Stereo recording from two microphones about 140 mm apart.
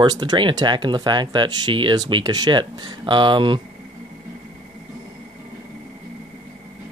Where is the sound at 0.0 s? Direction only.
30° right (ahead or behind).